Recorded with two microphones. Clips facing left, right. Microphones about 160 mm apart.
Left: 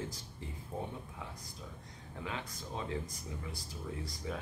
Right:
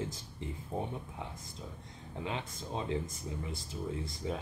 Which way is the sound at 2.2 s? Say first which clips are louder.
Right 3 dB; 20° right (ahead or behind).